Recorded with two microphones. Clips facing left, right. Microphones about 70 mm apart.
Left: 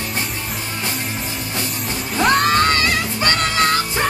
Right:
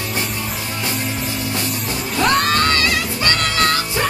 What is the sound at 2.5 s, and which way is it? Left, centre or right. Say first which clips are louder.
Music: left 1 dB; left.